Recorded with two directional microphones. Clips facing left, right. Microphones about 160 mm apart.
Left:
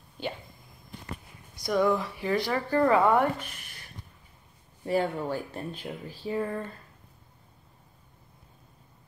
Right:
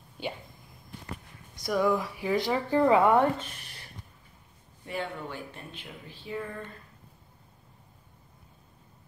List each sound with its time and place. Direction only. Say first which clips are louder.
1.6 s speech: left 1 dB; 5° right (ahead or behind); by 3.8 s 25° right (ahead or behind)
4.8 s speech: left 8 dB; 40° left (ahead or behind)